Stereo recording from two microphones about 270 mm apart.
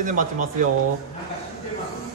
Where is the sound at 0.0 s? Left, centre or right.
Right.